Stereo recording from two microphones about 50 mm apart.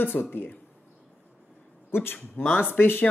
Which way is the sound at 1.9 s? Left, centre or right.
Left.